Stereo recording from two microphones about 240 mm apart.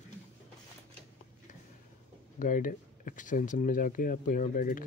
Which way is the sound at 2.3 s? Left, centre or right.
Left.